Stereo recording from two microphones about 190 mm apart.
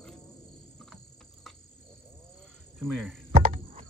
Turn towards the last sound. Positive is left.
turn(degrees=-35)  # may be behind; listen again after turning